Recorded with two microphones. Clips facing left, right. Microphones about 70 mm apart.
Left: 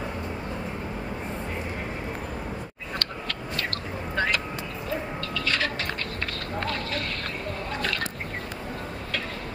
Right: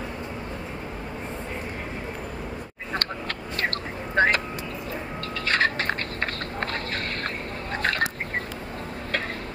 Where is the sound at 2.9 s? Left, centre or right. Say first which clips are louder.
Right 3 dB; right.